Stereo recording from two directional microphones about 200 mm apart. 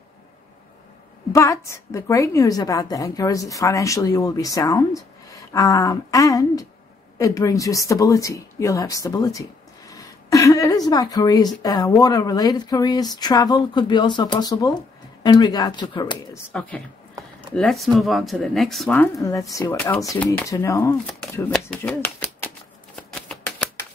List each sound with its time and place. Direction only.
1.3 s a woman's voice: 15° left (ahead or behind)
16.5 s a woman's voice: 5° left (ahead or behind)
21.8 s typewriter: 5° left (ahead or behind)
22.9 s shuffling cards: 5° left (ahead or behind)